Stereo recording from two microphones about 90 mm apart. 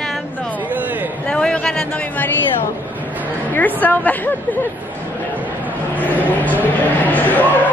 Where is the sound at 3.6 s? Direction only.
20° left (ahead or behind).